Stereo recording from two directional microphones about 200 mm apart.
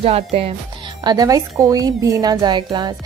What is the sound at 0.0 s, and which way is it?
Speech, 30° right (ahead or behind).